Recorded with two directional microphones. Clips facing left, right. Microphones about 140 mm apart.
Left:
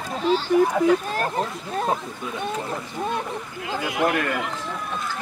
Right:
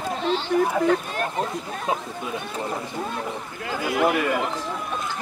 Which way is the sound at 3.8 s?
Centre (ahead or behind).